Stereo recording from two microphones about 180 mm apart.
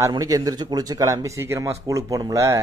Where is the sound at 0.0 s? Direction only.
20° right (ahead or behind).